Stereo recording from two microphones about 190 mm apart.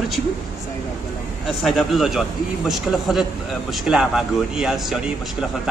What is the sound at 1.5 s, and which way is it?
Speech, centre (ahead or behind).